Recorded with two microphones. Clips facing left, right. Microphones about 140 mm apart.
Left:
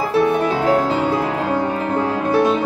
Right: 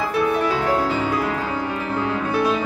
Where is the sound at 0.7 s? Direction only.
25° left (ahead or behind).